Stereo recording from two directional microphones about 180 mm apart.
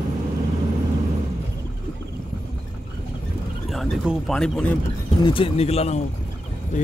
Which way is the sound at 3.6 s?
Centre (ahead or behind).